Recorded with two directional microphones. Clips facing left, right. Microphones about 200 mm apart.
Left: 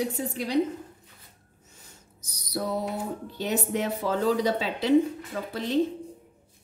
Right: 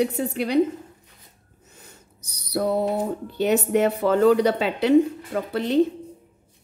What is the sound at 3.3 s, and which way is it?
A woman's voice, 65° right (ahead or behind).